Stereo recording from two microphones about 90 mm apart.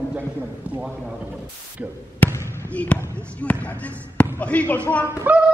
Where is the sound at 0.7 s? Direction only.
10° right (ahead or behind).